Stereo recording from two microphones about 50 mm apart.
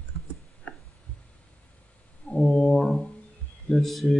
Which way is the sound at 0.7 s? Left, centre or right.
Left.